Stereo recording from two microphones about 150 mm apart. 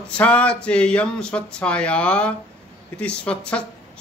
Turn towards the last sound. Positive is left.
turn(degrees=10)  # may be behind; listen again after turning